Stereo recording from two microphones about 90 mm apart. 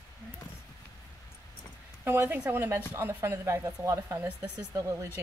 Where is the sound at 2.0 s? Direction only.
25° right (ahead or behind).